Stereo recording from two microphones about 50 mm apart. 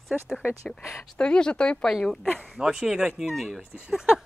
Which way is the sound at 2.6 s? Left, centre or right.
Centre.